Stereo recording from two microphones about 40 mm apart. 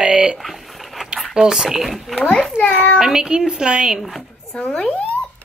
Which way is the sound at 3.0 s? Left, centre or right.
Centre.